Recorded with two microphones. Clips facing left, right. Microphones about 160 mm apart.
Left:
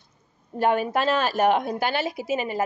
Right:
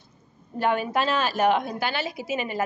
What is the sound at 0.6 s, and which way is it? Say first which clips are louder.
A woman's voice: left 2 dB; 45° left (ahead or behind).